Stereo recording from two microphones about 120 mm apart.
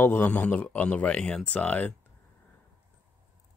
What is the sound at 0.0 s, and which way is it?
Speech, 20° left (ahead or behind).